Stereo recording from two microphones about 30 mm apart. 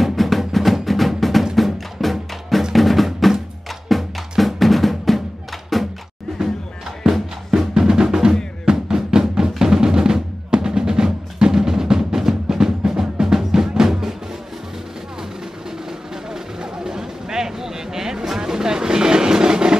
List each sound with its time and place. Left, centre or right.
0.0 s music: centre
3.9 s drum: centre
5.7 s music: centre
7.0 s drum: centre
9.6 s percussion: right
16.3 s vehicle: right